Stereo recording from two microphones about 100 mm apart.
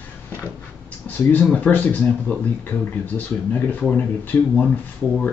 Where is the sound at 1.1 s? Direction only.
20° left (ahead or behind).